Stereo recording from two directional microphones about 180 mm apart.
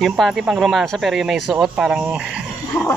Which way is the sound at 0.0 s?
Centre (ahead or behind).